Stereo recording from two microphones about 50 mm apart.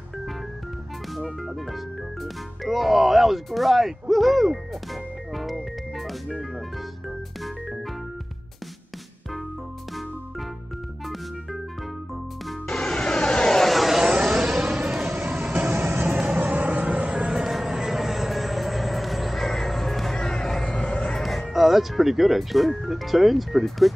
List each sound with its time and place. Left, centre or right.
1.1 s speech: centre
5.3 s music: centre
12.6 s music: centre
13.7 s a sound: centre
14.0 s vehicle: centre
15.7 s vehicle: right
16.1 s vehicle: right
17.3 s vehicle: centre
21.1 s speech: centre